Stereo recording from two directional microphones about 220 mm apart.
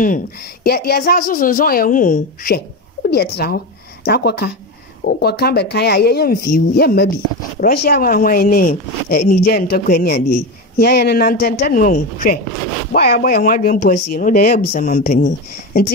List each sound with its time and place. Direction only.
0.7 s speech: 45° left (ahead or behind)